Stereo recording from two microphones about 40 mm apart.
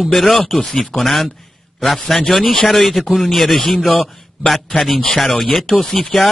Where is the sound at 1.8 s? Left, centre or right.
Centre.